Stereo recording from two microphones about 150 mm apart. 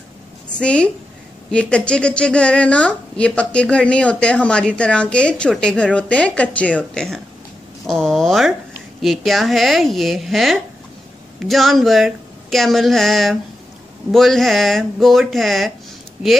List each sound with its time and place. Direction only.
0.6 s a woman's voice: 5° left (ahead or behind)